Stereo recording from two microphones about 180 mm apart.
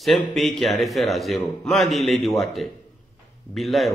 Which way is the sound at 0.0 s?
Centre (ahead or behind).